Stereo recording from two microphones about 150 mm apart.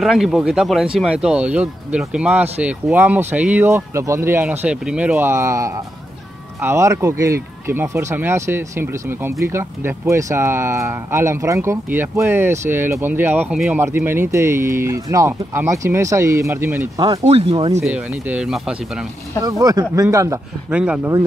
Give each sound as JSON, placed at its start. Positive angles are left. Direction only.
{"t": 0.0, "sound": "speech", "side_deg": 0}
{"t": 17.2, "sound": "speech", "side_deg": -40}
{"t": 17.8, "sound": "speech", "side_deg": -10}
{"t": 19.6, "sound": "speech", "side_deg": -25}
{"t": 20.7, "sound": "speech", "side_deg": -10}